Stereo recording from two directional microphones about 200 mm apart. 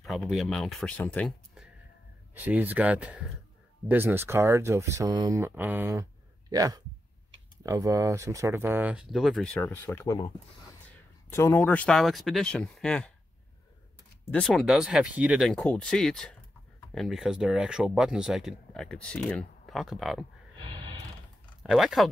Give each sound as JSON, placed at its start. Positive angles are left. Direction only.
{"t": 0.0, "sound": "speech", "side_deg": 0}
{"t": 2.3, "sound": "speech", "side_deg": -10}
{"t": 11.2, "sound": "speech", "side_deg": 15}
{"t": 14.2, "sound": "speech", "side_deg": 5}
{"t": 21.6, "sound": "speech", "side_deg": 0}